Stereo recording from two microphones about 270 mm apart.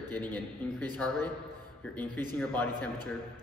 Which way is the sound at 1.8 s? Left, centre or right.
Centre.